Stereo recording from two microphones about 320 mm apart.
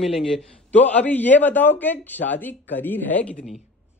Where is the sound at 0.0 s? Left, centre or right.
Centre.